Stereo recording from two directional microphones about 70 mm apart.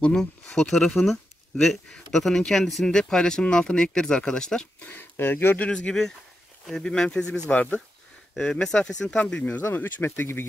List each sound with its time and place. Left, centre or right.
0.0 s speech: centre
4.7 s speech: left
5.6 s speech: centre
9.1 s speech: centre